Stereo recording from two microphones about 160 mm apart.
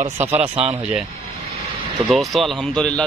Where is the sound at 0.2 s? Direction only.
15° right (ahead or behind).